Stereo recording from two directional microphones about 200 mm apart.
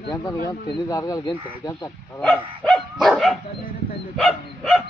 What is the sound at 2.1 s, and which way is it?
Dog, 5° left (ahead or behind).